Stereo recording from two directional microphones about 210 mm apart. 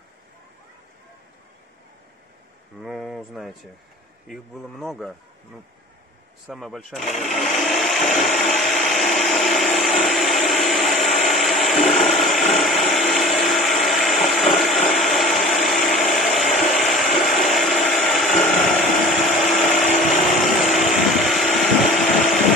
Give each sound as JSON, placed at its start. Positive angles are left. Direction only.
{"t": 2.8, "sound": "speech", "side_deg": 0}
{"t": 6.4, "sound": "speech", "side_deg": 0}
{"t": 7.3, "sound": "a sound", "side_deg": 0}
{"t": 12.2, "sound": "blender", "side_deg": 0}
{"t": 13.5, "sound": "vehicle", "side_deg": 0}
{"t": 14.1, "sound": "ratchet", "side_deg": 0}
{"t": 20.4, "sound": "vehicle", "side_deg": 0}